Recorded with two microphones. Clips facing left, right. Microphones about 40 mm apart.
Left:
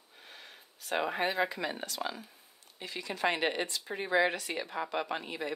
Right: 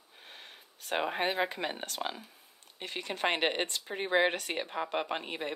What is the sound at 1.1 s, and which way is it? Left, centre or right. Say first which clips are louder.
Speech: even; right.